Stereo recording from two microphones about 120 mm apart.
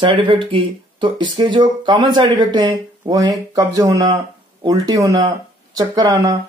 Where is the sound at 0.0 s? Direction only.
45° right (ahead or behind).